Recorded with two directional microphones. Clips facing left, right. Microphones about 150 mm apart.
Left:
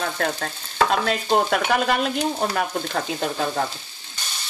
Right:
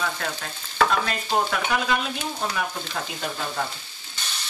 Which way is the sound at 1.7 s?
60° left (ahead or behind).